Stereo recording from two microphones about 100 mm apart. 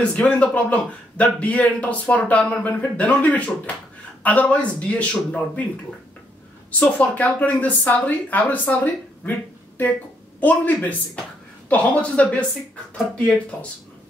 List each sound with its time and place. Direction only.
0.0 s a man's voice: 10° left (ahead or behind)
7.0 s a man's voice: 15° left (ahead or behind)